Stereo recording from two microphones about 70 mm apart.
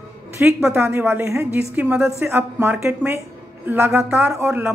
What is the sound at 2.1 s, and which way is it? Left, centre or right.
A woman's voice, right.